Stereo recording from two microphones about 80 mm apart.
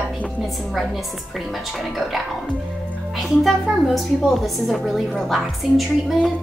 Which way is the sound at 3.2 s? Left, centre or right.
Centre.